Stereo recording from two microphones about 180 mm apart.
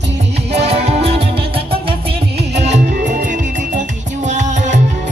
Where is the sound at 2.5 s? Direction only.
40° right (ahead or behind).